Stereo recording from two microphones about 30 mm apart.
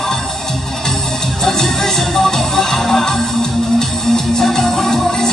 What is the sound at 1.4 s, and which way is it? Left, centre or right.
Music, centre.